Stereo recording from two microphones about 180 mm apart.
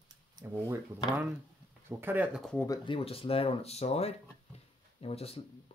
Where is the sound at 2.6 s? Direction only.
25° left (ahead or behind).